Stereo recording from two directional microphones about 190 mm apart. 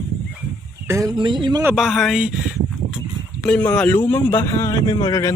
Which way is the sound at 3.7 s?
5° left (ahead or behind).